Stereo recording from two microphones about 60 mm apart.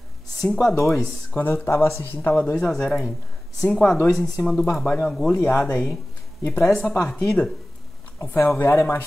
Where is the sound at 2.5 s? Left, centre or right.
Centre.